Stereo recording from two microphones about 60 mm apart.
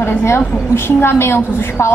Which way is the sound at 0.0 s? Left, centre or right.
Left.